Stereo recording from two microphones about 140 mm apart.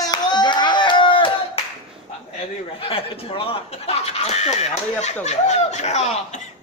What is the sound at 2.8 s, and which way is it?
Speech, 40° left (ahead or behind).